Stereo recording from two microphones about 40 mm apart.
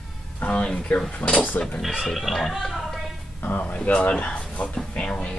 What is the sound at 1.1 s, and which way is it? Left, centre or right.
Speech, left.